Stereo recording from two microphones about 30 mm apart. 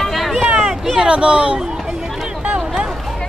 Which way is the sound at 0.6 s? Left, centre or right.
Centre.